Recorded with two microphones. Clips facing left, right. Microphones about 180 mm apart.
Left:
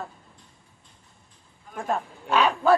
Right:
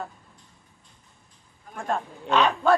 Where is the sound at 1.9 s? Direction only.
5° left (ahead or behind).